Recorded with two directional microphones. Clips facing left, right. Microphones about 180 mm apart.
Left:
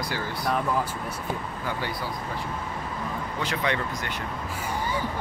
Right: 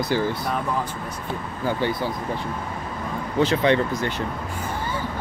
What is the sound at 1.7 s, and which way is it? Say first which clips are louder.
Speech: right 8 dB; 25° right (ahead or behind).